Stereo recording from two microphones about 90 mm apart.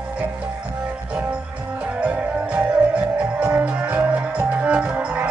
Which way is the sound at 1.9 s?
10° right (ahead or behind).